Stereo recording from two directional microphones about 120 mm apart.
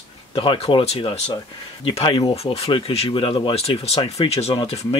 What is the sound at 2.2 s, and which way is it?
Speech, 60° left (ahead or behind).